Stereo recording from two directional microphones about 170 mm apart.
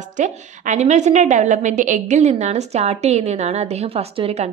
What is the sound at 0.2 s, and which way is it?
A woman's voice, 45° right (ahead or behind).